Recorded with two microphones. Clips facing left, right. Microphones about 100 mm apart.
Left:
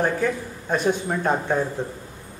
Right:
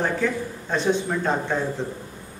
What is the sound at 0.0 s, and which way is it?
Speech, 15° left (ahead or behind).